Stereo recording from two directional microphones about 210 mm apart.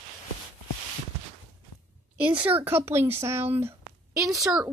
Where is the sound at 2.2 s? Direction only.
10° right (ahead or behind).